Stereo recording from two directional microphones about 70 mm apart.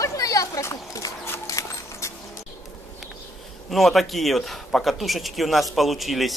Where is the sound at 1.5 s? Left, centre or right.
Left.